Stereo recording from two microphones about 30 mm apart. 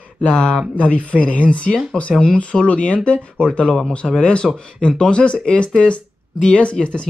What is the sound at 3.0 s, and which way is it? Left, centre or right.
A man's voice, left.